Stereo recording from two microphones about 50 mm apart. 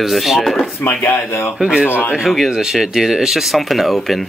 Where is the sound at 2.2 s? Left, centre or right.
Centre.